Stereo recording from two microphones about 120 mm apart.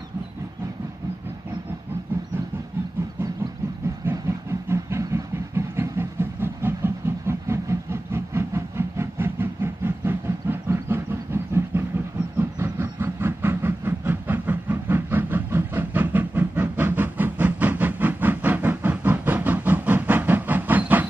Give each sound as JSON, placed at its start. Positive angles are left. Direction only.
{"t": 4.0, "sound": "vehicle", "side_deg": -20}
{"t": 12.4, "sound": "train", "side_deg": -20}